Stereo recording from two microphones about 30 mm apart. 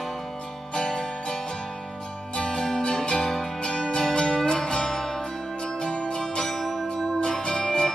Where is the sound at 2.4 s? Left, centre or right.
Left.